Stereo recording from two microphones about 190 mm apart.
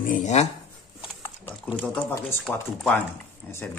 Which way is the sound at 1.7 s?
5° left (ahead or behind).